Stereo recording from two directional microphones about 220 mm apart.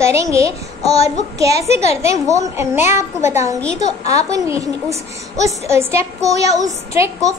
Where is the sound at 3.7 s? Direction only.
30° left (ahead or behind).